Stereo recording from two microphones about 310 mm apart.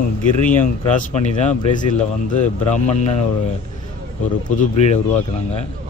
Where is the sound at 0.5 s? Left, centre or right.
Left.